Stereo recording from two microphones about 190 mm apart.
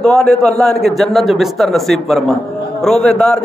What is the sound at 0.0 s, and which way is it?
A man's voice, 5° left (ahead or behind).